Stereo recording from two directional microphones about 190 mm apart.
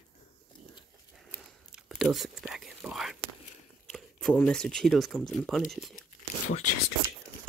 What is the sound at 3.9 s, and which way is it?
Speech, 5° left (ahead or behind).